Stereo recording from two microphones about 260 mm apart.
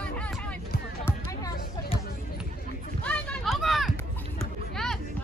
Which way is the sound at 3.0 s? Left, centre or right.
Centre.